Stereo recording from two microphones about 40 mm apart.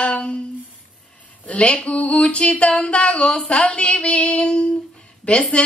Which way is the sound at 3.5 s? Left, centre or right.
Left.